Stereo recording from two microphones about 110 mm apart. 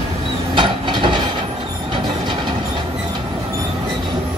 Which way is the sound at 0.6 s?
45° right (ahead or behind).